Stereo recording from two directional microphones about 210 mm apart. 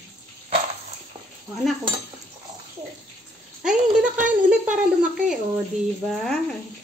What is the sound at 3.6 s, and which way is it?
A woman's voice, 5° right (ahead or behind).